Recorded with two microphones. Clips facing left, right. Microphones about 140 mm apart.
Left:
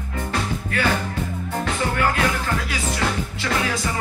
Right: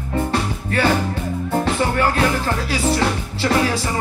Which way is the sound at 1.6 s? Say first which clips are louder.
Right 2 dB; 30° right (ahead or behind).